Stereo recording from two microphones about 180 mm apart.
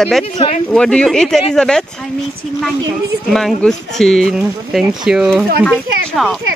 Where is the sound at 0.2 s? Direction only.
30° left (ahead or behind).